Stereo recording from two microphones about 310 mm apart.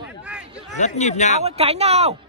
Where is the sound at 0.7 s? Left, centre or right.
Left.